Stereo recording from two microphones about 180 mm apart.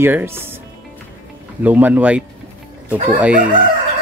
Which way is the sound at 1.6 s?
10° right (ahead or behind).